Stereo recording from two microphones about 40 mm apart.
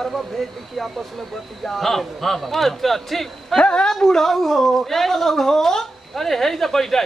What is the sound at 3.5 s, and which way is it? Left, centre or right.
Speech, left.